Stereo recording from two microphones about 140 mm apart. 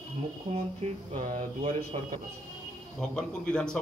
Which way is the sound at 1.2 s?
60° right (ahead or behind).